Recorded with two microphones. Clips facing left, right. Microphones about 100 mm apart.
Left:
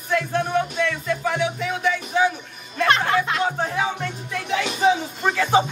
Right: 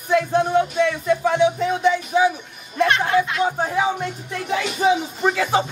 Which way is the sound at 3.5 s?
10° right (ahead or behind).